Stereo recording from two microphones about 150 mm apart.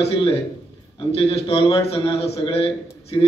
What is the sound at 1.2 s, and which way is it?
A man's voice, 40° left (ahead or behind).